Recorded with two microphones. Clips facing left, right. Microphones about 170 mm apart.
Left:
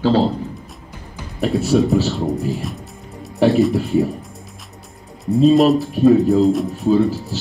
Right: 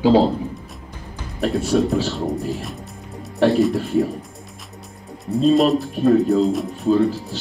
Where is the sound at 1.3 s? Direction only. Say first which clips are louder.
Left 2 dB; centre (ahead or behind).